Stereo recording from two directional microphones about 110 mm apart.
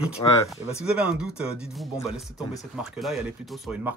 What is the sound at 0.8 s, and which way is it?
Speech, 10° right (ahead or behind).